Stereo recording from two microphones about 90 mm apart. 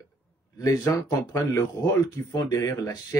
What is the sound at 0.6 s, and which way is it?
Speech, 40° left (ahead or behind).